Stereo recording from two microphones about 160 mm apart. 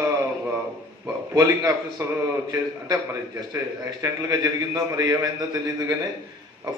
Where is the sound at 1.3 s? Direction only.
20° right (ahead or behind).